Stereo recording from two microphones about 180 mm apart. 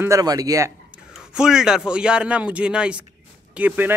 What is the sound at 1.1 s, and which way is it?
A man's voice, 5° right (ahead or behind).